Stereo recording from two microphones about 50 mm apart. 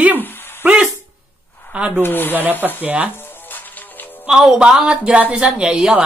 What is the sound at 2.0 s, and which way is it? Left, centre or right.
Speech, left.